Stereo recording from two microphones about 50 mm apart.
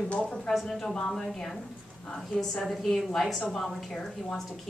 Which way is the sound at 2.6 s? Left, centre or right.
Centre.